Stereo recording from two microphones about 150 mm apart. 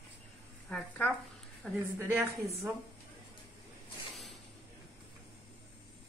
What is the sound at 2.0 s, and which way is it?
Speech, 20° right (ahead or behind).